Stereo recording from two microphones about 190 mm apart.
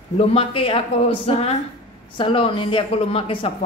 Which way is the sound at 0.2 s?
30° left (ahead or behind).